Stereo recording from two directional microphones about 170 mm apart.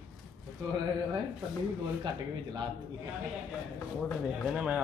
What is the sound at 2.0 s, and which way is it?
Speech, 25° right (ahead or behind).